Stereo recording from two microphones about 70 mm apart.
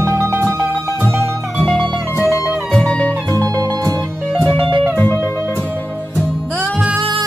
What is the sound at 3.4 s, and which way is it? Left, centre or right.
Music, right.